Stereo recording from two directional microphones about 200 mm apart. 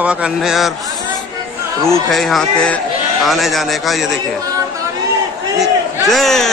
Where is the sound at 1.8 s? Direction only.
Centre (ahead or behind).